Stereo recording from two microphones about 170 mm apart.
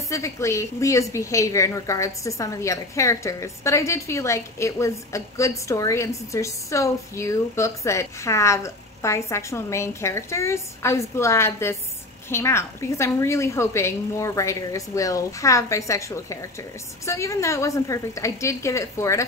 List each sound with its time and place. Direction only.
0.1 s a woman's voice: 15° left (ahead or behind)